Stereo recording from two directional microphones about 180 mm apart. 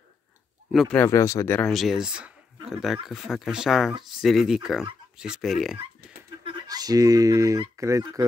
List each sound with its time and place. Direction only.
0.7 s speech: centre (ahead or behind)
0.9 s speech: 15° left (ahead or behind)
1.6 s speech: centre (ahead or behind)
6.4 s speech: 25° right (ahead or behind)
7.8 s fowl: 20° right (ahead or behind)